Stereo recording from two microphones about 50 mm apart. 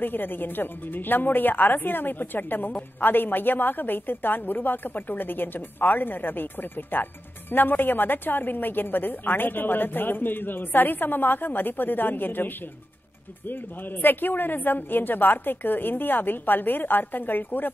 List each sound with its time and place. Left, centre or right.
0.0 s a woman's voice: left
14.0 s a woman's voice: left